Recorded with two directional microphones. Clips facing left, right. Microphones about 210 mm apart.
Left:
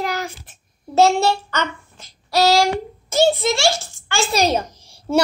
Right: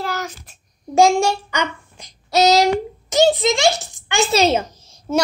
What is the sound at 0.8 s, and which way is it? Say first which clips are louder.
A child's voice: right 1 dB; 15° right (ahead or behind).